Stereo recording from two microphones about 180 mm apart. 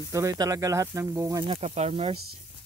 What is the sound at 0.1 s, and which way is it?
Speech, 20° right (ahead or behind).